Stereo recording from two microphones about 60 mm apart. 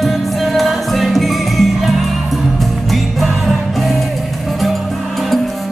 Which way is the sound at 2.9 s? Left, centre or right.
Centre.